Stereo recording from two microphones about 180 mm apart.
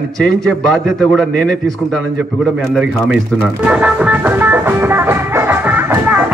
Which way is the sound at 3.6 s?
5° right (ahead or behind).